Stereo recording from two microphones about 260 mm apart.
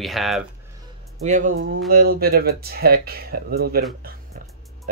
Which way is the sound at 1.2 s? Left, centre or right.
Right.